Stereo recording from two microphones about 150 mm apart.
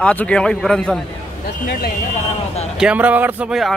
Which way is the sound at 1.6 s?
65° left (ahead or behind).